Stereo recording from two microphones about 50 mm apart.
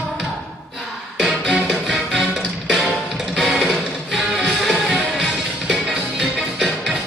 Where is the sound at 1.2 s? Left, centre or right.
Centre.